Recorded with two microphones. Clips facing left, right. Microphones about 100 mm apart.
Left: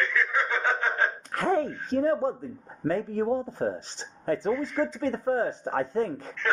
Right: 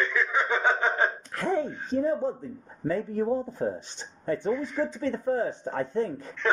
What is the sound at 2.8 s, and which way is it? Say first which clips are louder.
Speech: left 1 dB; 90° left.